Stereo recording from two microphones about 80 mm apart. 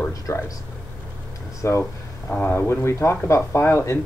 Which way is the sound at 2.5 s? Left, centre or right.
Left.